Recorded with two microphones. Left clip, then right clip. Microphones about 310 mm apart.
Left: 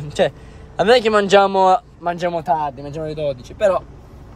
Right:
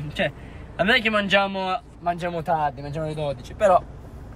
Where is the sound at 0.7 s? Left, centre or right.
Centre.